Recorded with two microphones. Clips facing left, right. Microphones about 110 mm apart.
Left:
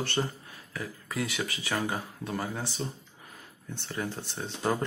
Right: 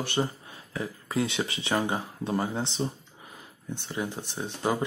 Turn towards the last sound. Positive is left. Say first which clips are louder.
# right 2 dB
turn(degrees=-10)  # may be behind; listen again after turning